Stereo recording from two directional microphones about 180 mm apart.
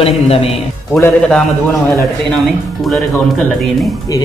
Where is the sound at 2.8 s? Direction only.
5° left (ahead or behind).